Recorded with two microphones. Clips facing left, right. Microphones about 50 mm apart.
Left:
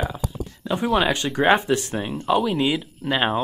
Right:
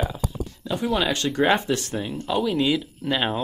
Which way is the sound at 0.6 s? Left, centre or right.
Left.